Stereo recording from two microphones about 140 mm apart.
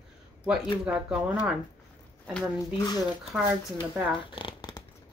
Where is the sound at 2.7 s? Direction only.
30° left (ahead or behind).